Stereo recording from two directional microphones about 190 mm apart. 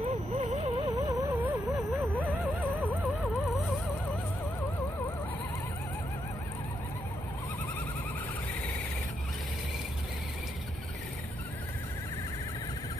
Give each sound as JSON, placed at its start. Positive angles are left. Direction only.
{"t": 0.0, "sound": "a sound", "side_deg": -35}
{"t": 0.8, "sound": "music", "side_deg": -15}
{"t": 1.9, "sound": "vehicle", "side_deg": -5}